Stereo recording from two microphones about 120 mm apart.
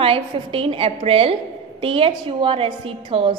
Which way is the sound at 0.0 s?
50° right (ahead or behind).